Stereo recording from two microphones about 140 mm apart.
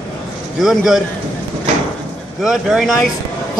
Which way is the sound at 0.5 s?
Centre (ahead or behind).